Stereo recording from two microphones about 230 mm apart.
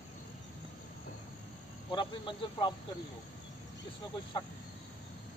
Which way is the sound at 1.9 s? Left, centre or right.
Left.